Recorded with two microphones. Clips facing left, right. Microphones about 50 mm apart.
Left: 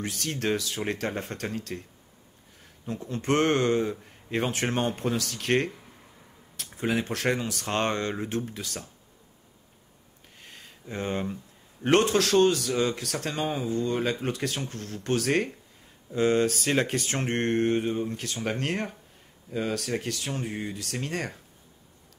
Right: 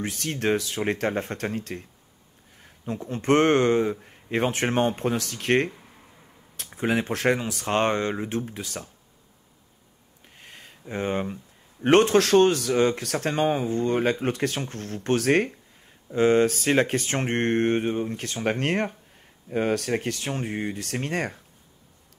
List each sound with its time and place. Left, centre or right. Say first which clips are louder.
0.2 s speech: right 4 dB; right
3.0 s speech: right 4 dB; right
6.9 s speech: right 4 dB; right
10.5 s a sound: right 4 dB; right
11.8 s speech: right 4 dB; right
16.1 s speech: right 4 dB; right